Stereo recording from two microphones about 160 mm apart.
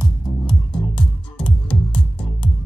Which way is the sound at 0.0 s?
25° left (ahead or behind).